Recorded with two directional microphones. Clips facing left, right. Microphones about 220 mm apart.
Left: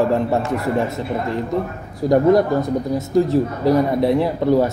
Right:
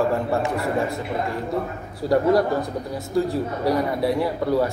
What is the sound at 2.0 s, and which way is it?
Speech, 20° left (ahead or behind).